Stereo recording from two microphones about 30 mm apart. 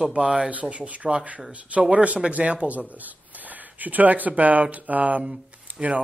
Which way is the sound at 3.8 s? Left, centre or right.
Right.